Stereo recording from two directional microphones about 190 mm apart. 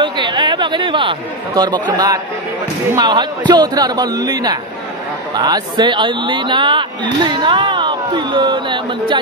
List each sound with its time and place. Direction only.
0.0 s speech: 25° right (ahead or behind)